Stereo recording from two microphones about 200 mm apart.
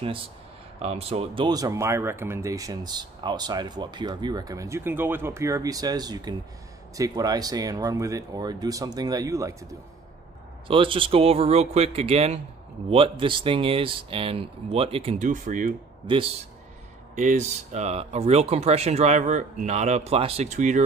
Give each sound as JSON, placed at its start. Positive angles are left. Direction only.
{"t": 0.7, "sound": "speech", "side_deg": -30}
{"t": 10.7, "sound": "speech", "side_deg": -25}
{"t": 15.2, "sound": "speech", "side_deg": -40}
{"t": 17.1, "sound": "speech", "side_deg": -35}